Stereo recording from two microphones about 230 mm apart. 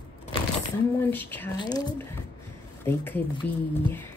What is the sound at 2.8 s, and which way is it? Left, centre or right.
Speech, centre.